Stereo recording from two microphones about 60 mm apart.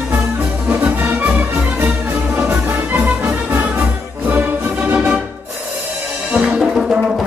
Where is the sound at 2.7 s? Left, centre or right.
Right.